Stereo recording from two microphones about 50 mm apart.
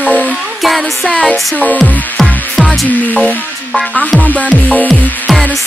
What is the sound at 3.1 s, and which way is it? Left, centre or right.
Speech, left.